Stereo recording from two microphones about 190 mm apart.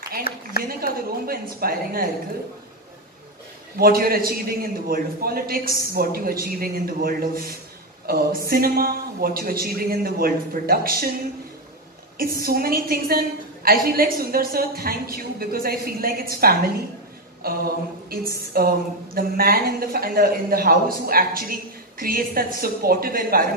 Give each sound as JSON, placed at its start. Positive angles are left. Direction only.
{"t": 0.3, "sound": "speech", "side_deg": 50}
{"t": 0.7, "sound": "a woman's voice", "side_deg": -50}
{"t": 3.7, "sound": "a woman's voice", "side_deg": -50}
{"t": 12.2, "sound": "a woman's voice", "side_deg": -50}